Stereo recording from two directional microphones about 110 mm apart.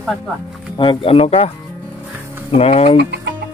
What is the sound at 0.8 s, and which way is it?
Speech, 50° left (ahead or behind).